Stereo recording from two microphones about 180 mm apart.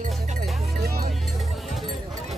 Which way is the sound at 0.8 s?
60° right (ahead or behind).